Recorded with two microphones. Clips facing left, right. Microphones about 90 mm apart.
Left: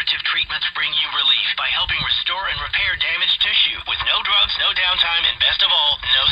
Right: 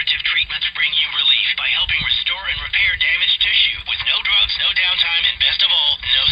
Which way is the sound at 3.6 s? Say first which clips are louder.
Even; 35° left (ahead or behind).